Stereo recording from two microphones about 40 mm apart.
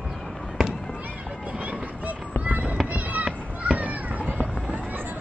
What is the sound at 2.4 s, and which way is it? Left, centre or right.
Fireworks, right.